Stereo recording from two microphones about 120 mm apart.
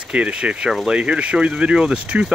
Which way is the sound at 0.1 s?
10° right (ahead or behind).